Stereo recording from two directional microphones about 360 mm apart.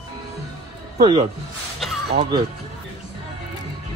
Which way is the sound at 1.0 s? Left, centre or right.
Centre.